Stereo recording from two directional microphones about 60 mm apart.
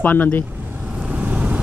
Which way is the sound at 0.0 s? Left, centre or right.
Left.